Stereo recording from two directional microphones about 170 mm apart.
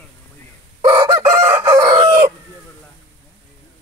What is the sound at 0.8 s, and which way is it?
Chicken, 30° right (ahead or behind).